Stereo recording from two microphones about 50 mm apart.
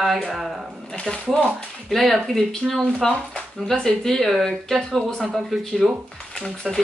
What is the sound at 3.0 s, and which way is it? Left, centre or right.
Speech, centre.